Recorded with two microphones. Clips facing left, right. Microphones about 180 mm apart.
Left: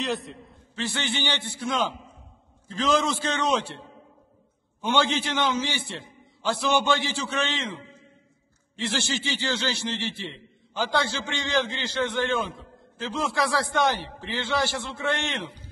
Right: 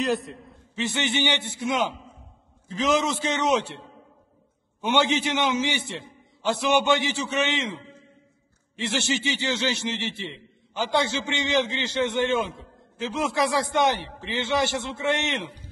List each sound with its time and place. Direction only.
0.0 s a man's voice: centre (ahead or behind)
0.7 s a man's voice: 20° right (ahead or behind)
4.8 s a man's voice: 20° right (ahead or behind)